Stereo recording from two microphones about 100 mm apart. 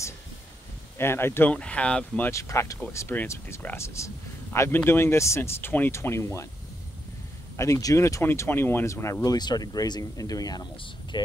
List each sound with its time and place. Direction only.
0.9 s speech: 25° left (ahead or behind)
1.5 s speech: 10° left (ahead or behind)
2.3 s speech: 30° left (ahead or behind)
7.5 s speech: 30° left (ahead or behind)